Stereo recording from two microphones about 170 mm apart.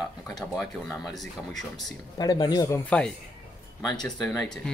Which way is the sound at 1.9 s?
25° left (ahead or behind).